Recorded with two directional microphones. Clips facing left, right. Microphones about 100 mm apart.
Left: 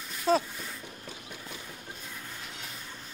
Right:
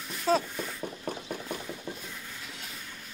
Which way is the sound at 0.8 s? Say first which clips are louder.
Right 9 dB; 50° right (ahead or behind).